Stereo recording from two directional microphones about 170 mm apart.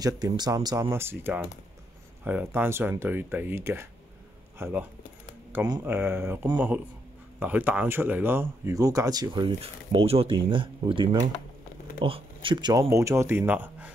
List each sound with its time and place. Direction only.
0.0 s speech: 20° right (ahead or behind)
9.6 s speech: 35° right (ahead or behind); by 13.9 s 10° right (ahead or behind)